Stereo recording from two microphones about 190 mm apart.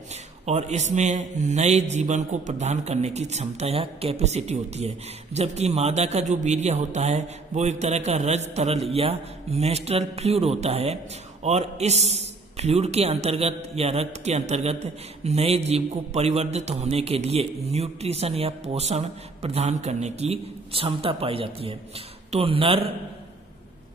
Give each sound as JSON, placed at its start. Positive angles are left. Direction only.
{"t": 0.1, "sound": "a man's voice", "side_deg": -35}